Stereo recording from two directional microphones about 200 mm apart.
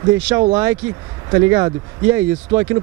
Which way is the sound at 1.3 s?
15° right (ahead or behind).